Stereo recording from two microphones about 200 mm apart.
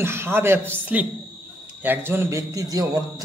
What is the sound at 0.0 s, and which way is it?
A man's voice, 10° right (ahead or behind).